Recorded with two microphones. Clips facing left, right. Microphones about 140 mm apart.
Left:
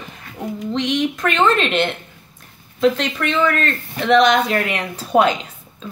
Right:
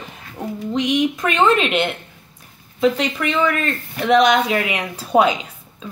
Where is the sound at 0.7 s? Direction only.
10° right (ahead or behind).